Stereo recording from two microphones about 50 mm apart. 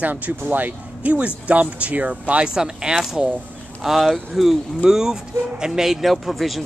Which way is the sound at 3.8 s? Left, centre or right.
Centre.